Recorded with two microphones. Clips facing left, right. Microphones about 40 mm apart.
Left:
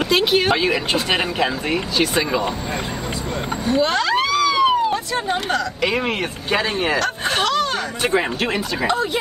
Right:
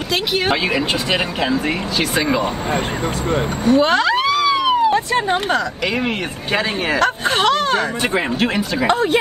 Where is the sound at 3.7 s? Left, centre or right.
Right.